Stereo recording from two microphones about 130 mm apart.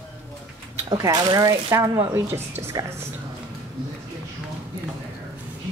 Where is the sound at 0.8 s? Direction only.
30° right (ahead or behind).